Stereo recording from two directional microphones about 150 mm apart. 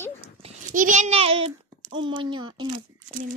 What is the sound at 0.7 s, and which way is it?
A child's voice, 55° right (ahead or behind).